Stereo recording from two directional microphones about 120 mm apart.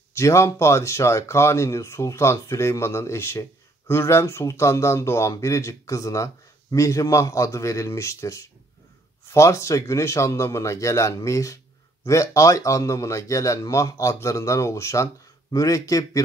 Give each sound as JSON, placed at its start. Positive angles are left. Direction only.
{"t": 0.1, "sound": "speech", "side_deg": 25}